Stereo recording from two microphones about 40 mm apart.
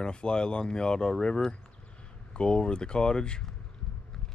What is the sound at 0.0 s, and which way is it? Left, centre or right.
Speech, left.